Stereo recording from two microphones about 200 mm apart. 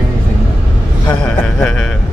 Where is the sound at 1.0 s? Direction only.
10° left (ahead or behind).